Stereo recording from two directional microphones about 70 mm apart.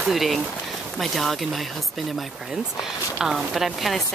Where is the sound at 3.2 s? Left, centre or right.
Centre.